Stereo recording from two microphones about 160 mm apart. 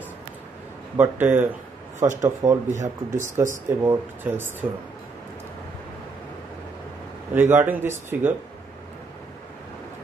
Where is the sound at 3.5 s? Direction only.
15° right (ahead or behind).